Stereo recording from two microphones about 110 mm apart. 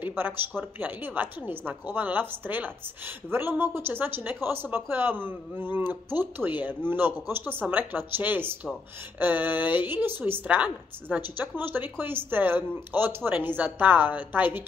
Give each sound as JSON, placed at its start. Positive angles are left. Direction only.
{"t": 0.0, "sound": "a woman's voice", "side_deg": -20}